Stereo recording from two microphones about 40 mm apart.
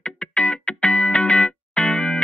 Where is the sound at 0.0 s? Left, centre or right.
Left.